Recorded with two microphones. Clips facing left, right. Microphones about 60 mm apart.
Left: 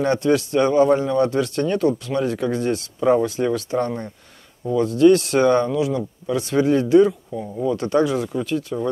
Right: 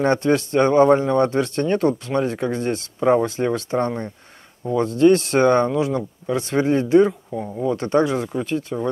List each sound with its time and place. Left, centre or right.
0.0 s a man's voice: right